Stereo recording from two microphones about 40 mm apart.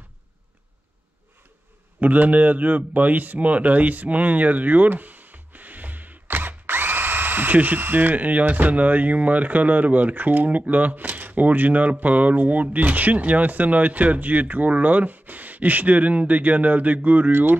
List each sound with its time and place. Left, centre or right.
2.0 s speech: right
17.3 s speech: right